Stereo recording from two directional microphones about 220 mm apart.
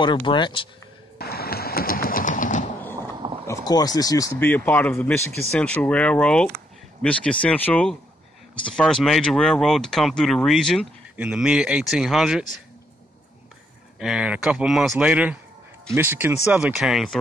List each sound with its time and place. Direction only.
0.0 s speech: 20° left (ahead or behind)
1.1 s a sound: 45° left (ahead or behind)
3.4 s speech: 15° left (ahead or behind); by 12.4 s centre (ahead or behind)
13.9 s speech: 5° right (ahead or behind)